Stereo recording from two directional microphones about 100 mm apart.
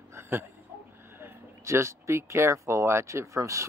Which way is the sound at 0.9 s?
25° right (ahead or behind).